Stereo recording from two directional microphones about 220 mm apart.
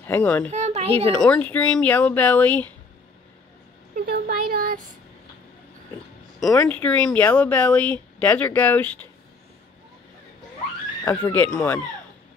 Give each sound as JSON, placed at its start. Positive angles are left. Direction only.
{"t": 0.0, "sound": "a child's voice", "side_deg": 10}
{"t": 0.5, "sound": "a sound", "side_deg": -30}
{"t": 1.0, "sound": "speech", "side_deg": 5}
{"t": 4.0, "sound": "a sound", "side_deg": -45}
{"t": 6.5, "sound": "speech", "side_deg": 10}
{"t": 11.1, "sound": "speech", "side_deg": 10}